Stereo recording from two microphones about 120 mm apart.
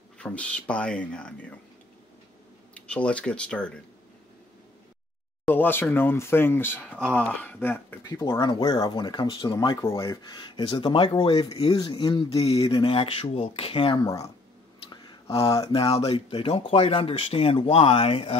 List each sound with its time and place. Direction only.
0.2 s speech: 10° left (ahead or behind)
2.7 s speech: 10° left (ahead or behind)
5.5 s speech: 15° left (ahead or behind)
8.4 s speech: 40° left (ahead or behind)
10.3 s speech: 40° left (ahead or behind)
12.4 s speech: 50° left (ahead or behind)
14.0 s speech: 30° left (ahead or behind)
14.9 s a sound: 40° left (ahead or behind)
15.7 s speech: 55° left (ahead or behind)